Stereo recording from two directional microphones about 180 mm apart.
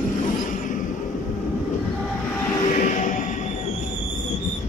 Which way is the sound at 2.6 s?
45° left (ahead or behind).